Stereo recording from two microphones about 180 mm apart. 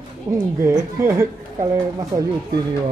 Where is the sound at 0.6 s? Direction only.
15° right (ahead or behind).